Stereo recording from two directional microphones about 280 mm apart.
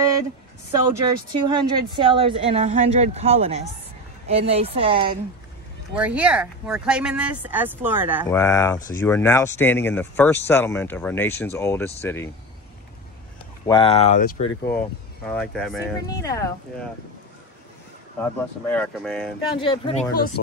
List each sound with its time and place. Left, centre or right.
1.3 s speech: centre
5.9 s speech: centre
8.3 s speech: centre
13.7 s speech: centre
14.6 s speech: centre
18.2 s speech: centre
19.5 s speech: centre